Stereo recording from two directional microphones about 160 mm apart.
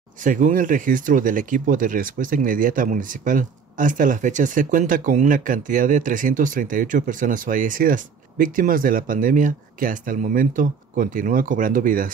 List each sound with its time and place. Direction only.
0.2 s speech: 55° right (ahead or behind)